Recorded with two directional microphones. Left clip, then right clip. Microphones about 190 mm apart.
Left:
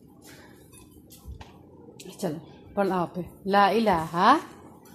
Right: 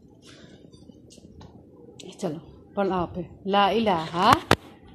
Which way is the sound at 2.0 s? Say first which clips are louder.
Even; 15° left (ahead or behind).